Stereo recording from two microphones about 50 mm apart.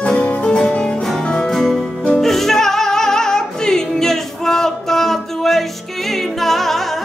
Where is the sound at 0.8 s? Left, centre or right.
Centre.